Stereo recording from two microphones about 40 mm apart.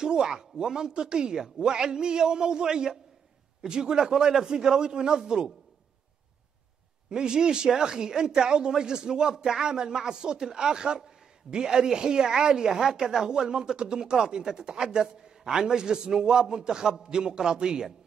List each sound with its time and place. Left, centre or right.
0.0 s speech: centre
7.1 s speech: centre